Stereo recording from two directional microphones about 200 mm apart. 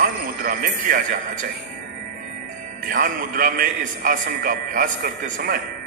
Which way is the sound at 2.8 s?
45° right (ahead or behind).